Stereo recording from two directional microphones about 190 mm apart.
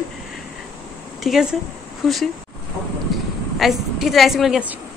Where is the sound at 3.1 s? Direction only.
Centre (ahead or behind).